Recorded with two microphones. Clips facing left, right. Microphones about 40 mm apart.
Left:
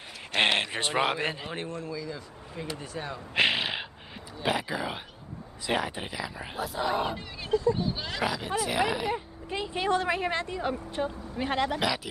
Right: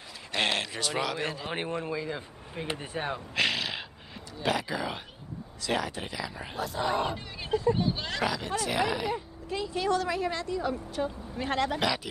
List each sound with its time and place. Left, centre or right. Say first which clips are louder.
0.4 s a man's voice: left 4 dB; left
1.5 s speech: right 3 dB; right
3.3 s gasp: left 4 dB; left
4.4 s speech: even; centre
9.5 s a woman's voice: left 1 dB; left
11.1 s speech: left 1 dB; centre